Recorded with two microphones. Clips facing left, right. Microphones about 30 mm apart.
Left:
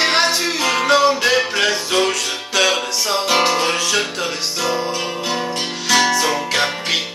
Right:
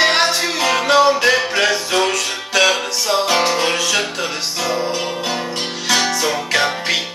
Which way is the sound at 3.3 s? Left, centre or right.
Centre.